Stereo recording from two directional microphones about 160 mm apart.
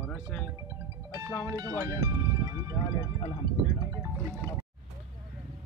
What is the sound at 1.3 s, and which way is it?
Speech, 15° left (ahead or behind).